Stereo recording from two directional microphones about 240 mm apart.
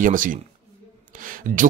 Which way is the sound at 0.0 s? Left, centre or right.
Right.